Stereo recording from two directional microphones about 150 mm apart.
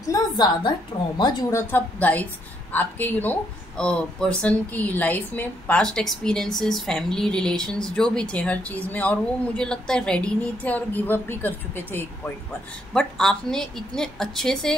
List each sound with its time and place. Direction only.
0.0 s a woman's voice: 25° left (ahead or behind)
1.5 s a woman's voice: 15° left (ahead or behind)